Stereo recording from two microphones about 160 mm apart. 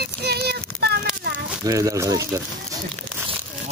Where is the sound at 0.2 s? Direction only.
90° right.